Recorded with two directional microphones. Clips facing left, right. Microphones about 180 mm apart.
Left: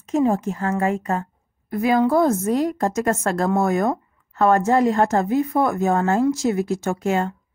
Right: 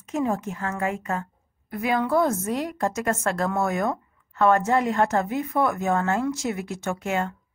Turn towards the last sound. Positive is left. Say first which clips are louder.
# left 5 dB
turn(degrees=35)  # may be behind; listen again after turning